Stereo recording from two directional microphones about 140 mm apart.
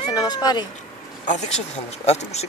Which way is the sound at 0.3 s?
30° left (ahead or behind).